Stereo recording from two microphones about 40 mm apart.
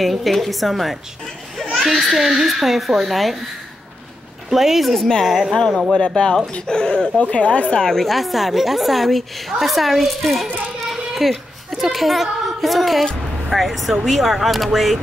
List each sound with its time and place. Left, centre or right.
0.0 s a woman's voice: centre
1.7 s a sound: centre
2.1 s a woman's voice: centre
4.5 s a woman's voice: centre
5.8 s speech: centre
6.0 s speech: left
7.8 s a woman's voice: centre